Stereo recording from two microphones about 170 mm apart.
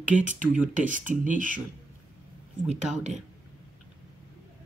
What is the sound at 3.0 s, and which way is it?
Speech, 45° right (ahead or behind).